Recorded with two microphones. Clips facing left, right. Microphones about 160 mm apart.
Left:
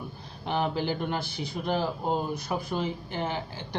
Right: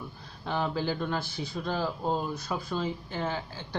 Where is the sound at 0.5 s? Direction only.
20° left (ahead or behind).